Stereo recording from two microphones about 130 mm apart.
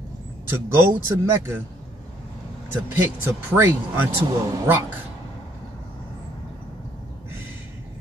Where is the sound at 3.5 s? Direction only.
15° right (ahead or behind).